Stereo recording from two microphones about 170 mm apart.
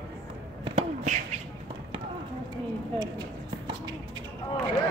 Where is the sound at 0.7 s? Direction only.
40° right (ahead or behind).